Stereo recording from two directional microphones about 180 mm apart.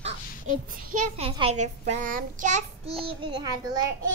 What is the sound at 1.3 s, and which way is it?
A child's voice, 35° right (ahead or behind).